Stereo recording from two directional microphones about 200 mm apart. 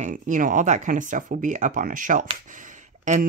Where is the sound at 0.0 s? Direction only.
40° right (ahead or behind).